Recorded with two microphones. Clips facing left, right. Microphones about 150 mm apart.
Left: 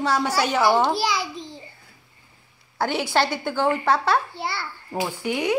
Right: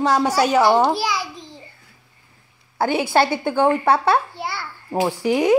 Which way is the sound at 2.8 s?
55° right (ahead or behind).